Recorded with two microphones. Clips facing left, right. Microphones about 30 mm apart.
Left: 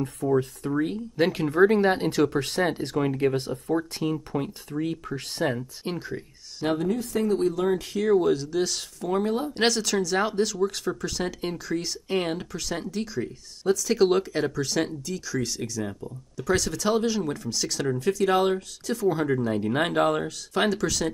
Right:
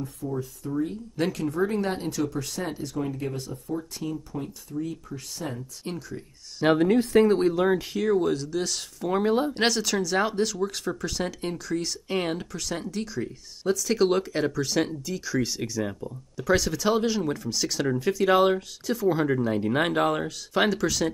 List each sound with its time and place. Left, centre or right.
0.3 s speech: left
1.2 s speech: left
1.5 s speech: left
1.8 s speech: left
2.0 s speech: left
4.0 s speech: left
5.9 s speech: left
6.8 s speech: right
7.3 s speech: right
7.6 s speech: centre
8.0 s speech: centre
9.0 s speech: centre
9.5 s speech: centre